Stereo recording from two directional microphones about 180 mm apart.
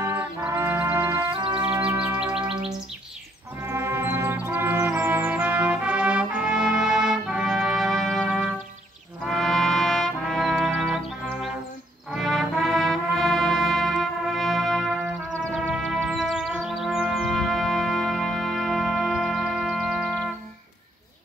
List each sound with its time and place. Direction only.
0.0 s music: 10° right (ahead or behind)
1.3 s music: 25° right (ahead or behind)
1.6 s music: 10° right (ahead or behind)
3.6 s music: 15° right (ahead or behind)
9.2 s trumpet: centre (ahead or behind)
12.1 s music: centre (ahead or behind)
14.9 s music: 10° right (ahead or behind)